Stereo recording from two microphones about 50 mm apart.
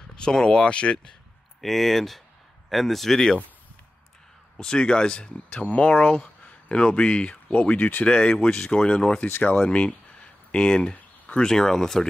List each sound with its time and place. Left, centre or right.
0.1 s speech: centre
1.6 s speech: centre
4.6 s speech: centre
5.5 s speech: left; by 9.2 s centre
9.7 s speech: left; by 12.1 s centre